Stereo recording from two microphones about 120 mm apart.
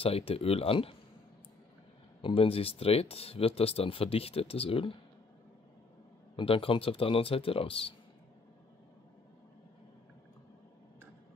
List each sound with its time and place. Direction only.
0.0 s speech: 55° left (ahead or behind)
2.2 s speech: 50° left (ahead or behind)
6.3 s speech: 50° left (ahead or behind)